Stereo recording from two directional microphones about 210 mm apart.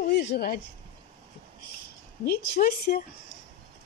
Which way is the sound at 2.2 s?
45° left (ahead or behind).